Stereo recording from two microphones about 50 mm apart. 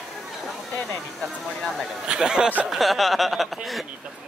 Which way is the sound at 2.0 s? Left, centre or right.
Centre.